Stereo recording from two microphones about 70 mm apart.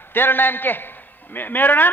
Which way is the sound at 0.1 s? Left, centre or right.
Left.